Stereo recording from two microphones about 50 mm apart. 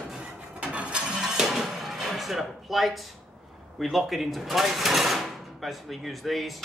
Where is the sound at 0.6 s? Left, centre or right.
Right.